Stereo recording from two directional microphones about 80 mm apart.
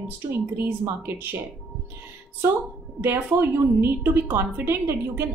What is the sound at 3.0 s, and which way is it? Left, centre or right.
A woman's voice, right.